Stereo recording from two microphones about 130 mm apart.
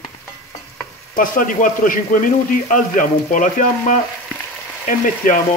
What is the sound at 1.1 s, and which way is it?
A man's voice, 90° left.